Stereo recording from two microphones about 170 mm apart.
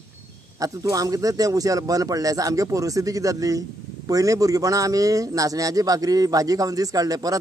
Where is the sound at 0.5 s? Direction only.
20° right (ahead or behind).